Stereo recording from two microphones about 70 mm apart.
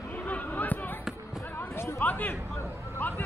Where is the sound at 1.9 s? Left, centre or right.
Left.